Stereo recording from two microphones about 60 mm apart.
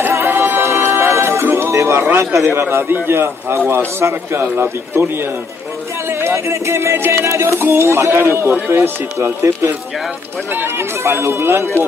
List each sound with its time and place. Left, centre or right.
0.3 s music: right
2.0 s a man's voice: right
10.5 s speech: right